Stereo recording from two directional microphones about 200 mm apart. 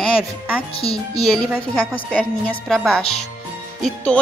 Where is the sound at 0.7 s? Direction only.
30° left (ahead or behind).